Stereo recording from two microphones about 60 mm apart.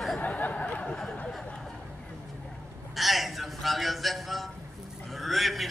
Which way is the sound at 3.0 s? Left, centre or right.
Centre.